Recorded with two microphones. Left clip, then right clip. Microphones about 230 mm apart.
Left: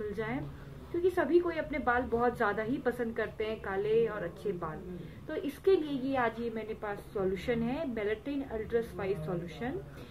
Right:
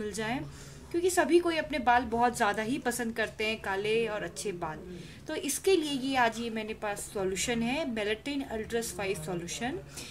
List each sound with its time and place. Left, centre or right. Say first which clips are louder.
1.0 s a woman's voice: right 2 dB; right